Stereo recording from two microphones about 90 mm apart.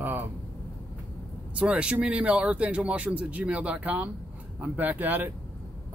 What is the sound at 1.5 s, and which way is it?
Speech, 10° right (ahead or behind).